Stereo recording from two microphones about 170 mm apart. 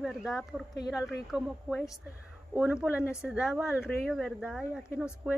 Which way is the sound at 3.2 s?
5° right (ahead or behind).